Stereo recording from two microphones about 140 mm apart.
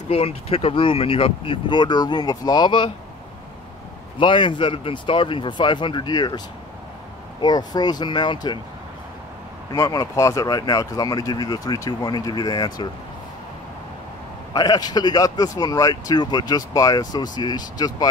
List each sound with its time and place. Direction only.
0.1 s speech: 45° left (ahead or behind)
4.2 s speech: 35° left (ahead or behind)
9.7 s speech: 25° left (ahead or behind)
14.5 s speech: 25° left (ahead or behind)